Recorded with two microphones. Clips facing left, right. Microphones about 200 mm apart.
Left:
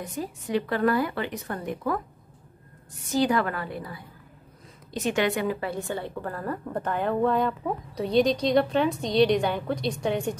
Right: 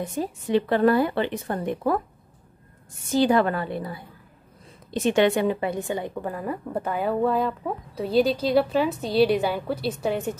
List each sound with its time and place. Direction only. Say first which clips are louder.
0.0 s a woman's voice: right 5 dB; 30° right (ahead or behind)
3.2 s a woman's voice: right 4 dB; 30° right (ahead or behind); by 10.3 s 5° right (ahead or behind)